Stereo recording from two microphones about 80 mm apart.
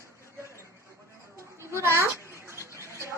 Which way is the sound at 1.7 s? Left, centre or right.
Right.